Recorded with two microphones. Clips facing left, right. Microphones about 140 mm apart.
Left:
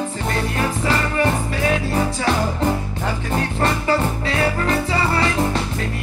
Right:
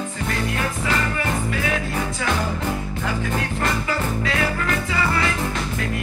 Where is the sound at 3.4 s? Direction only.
35° left (ahead or behind).